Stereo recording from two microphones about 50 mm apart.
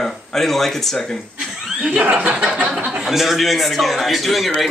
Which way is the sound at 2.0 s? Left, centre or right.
Right.